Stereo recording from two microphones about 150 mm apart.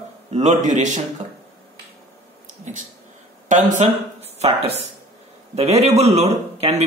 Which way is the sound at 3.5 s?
55° right (ahead or behind).